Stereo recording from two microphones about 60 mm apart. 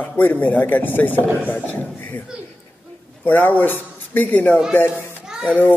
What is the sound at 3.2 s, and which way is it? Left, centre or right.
A man's voice, left.